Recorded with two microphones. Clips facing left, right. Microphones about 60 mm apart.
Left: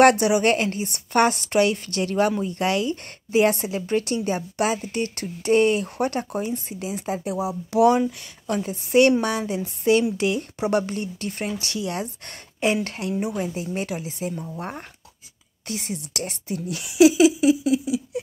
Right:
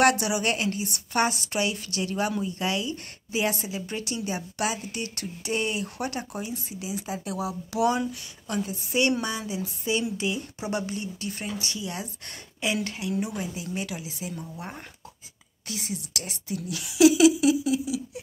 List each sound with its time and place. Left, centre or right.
0.0 s a woman's voice: left
7.2 s a woman's voice: left
11.6 s a woman's voice: left